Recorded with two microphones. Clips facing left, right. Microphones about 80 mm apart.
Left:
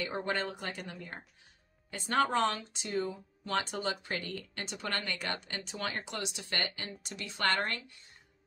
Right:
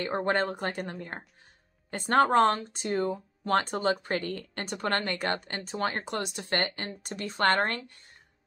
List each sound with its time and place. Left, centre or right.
0.0 s speech: right